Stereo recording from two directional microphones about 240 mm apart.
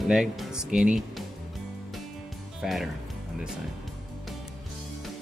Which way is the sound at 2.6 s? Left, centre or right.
Centre.